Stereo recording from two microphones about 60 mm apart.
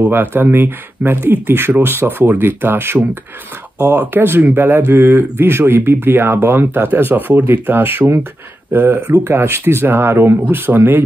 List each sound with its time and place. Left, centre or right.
0.1 s speech: right
4.1 s speech: right
9.2 s speech: right